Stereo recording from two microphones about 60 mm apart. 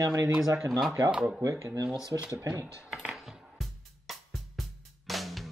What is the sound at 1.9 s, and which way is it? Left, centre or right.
Speech, left.